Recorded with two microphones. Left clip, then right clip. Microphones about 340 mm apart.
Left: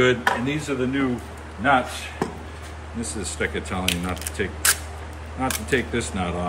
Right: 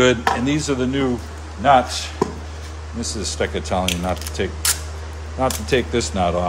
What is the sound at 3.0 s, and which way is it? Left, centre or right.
Speech, centre.